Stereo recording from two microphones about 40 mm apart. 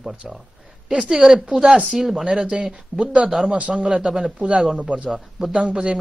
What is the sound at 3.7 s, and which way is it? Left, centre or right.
A man's voice, right.